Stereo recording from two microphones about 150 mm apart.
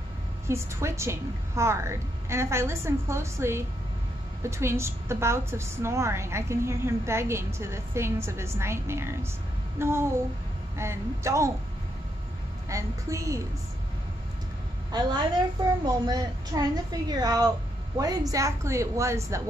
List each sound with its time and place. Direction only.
0.5 s a woman's voice: 20° right (ahead or behind)
12.6 s a woman's voice: 20° right (ahead or behind)
14.9 s a woman's voice: 30° right (ahead or behind)